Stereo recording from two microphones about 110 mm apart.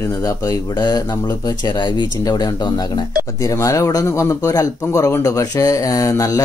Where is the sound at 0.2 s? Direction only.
30° left (ahead or behind).